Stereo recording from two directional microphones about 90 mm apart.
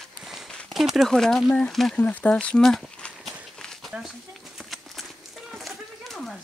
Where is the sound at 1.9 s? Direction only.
15° left (ahead or behind).